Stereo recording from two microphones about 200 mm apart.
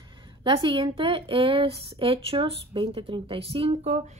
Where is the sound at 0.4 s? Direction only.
25° right (ahead or behind).